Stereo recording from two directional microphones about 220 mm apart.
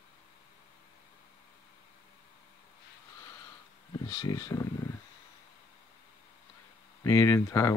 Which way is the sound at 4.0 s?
20° left (ahead or behind).